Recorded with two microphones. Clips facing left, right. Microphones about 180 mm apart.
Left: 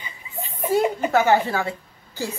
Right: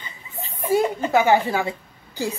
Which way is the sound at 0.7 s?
10° right (ahead or behind).